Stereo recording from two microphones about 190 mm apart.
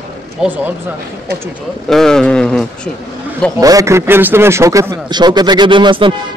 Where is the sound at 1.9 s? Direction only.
5° left (ahead or behind).